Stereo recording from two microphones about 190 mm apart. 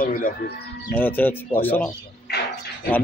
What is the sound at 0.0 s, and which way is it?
Speech, 50° left (ahead or behind).